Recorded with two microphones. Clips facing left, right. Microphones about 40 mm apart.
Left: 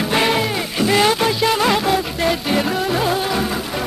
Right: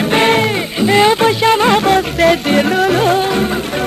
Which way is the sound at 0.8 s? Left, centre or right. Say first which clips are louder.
Right 5 dB; centre.